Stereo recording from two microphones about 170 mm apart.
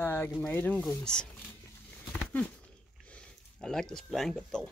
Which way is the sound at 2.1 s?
10° left (ahead or behind).